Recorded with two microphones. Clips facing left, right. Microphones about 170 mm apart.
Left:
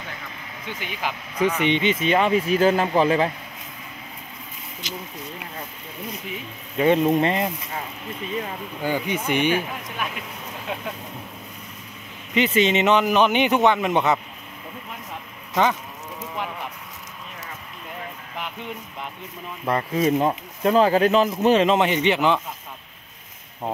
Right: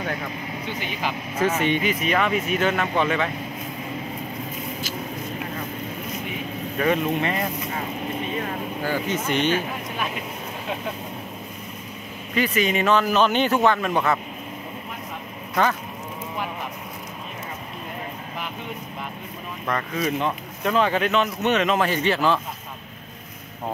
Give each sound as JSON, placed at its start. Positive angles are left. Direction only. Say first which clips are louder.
{"t": 1.4, "sound": "speech", "louder": "left 1 dB", "side_deg": 20}
{"t": 4.8, "sound": "speech", "louder": "right 2 dB", "side_deg": 20}
{"t": 6.8, "sound": "speech", "louder": "left 4 dB", "side_deg": 30}
{"t": 8.8, "sound": "speech", "louder": "left 2 dB", "side_deg": 15}
{"t": 12.4, "sound": "speech", "louder": "left 3 dB", "side_deg": 25}
{"t": 19.6, "sound": "speech", "louder": "left 4 dB", "side_deg": 30}